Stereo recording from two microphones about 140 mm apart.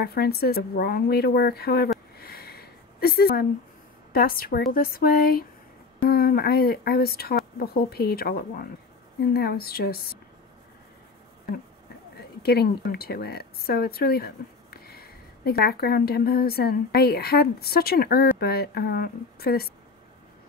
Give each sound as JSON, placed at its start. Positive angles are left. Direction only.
{"t": 0.1, "sound": "speech", "side_deg": 90}
{"t": 2.1, "sound": "a sound", "side_deg": 90}
{"t": 4.1, "sound": "speech", "side_deg": 90}
{"t": 12.9, "sound": "speech", "side_deg": 90}